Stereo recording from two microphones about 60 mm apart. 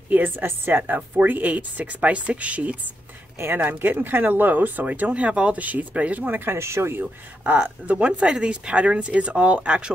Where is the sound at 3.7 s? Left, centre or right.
Right.